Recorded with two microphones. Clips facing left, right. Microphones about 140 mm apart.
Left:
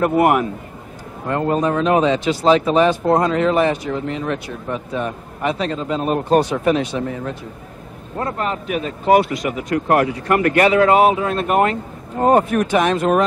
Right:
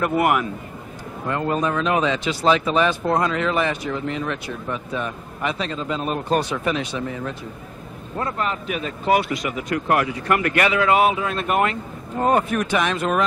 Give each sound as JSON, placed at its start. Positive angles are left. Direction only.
{"t": 0.0, "sound": "speech", "side_deg": 35}